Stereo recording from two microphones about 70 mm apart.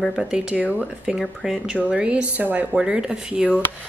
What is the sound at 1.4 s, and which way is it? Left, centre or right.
Speech, centre.